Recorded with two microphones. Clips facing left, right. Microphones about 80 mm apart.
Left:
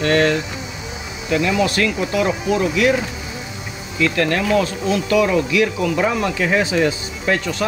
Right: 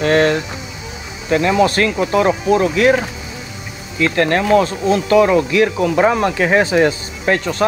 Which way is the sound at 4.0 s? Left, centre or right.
Right.